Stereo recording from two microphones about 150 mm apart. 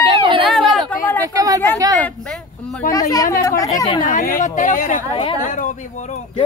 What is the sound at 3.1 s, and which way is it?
Speech, 20° left (ahead or behind).